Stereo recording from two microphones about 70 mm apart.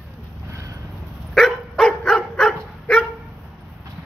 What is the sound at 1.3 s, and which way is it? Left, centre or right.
Dog, centre.